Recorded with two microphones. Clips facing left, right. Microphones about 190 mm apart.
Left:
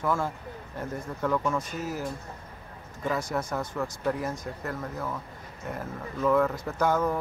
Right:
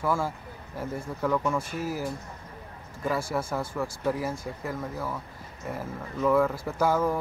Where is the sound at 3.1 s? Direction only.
5° right (ahead or behind).